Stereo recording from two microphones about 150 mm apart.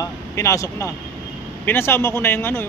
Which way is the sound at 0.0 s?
20° left (ahead or behind).